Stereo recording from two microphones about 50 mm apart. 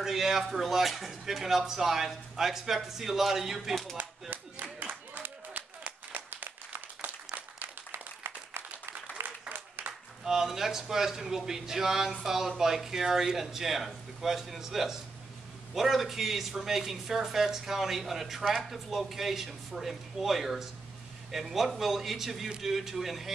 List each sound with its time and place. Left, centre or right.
0.0 s a man's voice: centre
4.0 s clapping: right
5.5 s clapping: right
6.1 s applause: right
9.5 s applause: right
10.2 s a man's voice: centre